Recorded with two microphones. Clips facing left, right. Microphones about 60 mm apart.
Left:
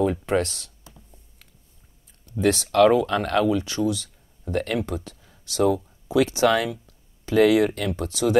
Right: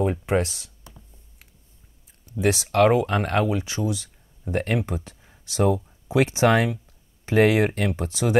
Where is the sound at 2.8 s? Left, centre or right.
Right.